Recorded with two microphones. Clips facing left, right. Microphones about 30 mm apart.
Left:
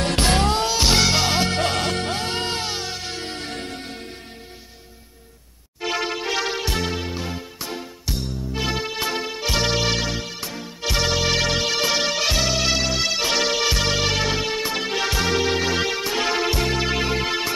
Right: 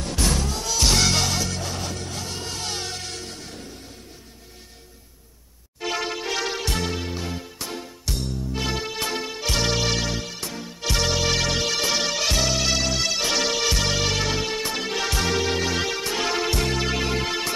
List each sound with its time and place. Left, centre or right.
0.2 s music: left
0.7 s music: left
1.3 s music: left
2.6 s music: centre
3.3 s music: left
5.8 s music: centre